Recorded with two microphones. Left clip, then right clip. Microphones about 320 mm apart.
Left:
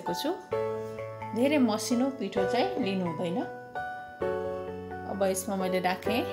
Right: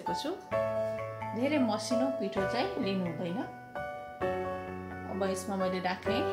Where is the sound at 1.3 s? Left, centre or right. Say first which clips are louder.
Left 4 dB; left.